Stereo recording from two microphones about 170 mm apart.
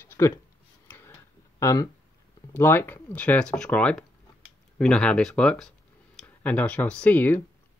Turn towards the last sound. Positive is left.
turn(degrees=10)  # may be behind; listen again after turning